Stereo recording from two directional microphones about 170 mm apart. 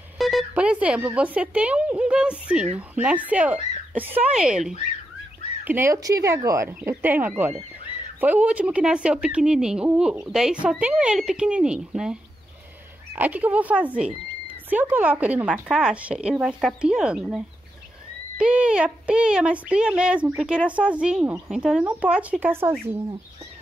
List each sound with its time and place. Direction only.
0.2 s speech: centre (ahead or behind)
5.7 s speech: 15° right (ahead or behind)
18.4 s speech: 5° right (ahead or behind)